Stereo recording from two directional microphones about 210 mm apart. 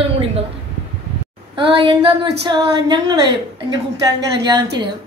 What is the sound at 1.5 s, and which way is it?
A woman's voice, 25° right (ahead or behind).